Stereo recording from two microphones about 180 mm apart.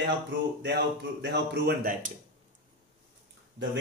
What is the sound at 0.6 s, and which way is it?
A man's voice, 70° right (ahead or behind).